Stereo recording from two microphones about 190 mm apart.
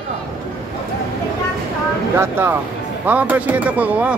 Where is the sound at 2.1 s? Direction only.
10° right (ahead or behind).